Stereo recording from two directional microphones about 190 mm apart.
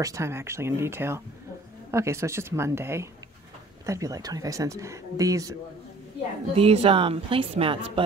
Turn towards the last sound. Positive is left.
turn(degrees=-30)  # may be behind; listen again after turning